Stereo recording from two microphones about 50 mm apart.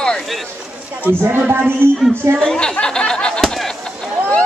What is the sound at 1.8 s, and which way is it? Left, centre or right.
Speech, right.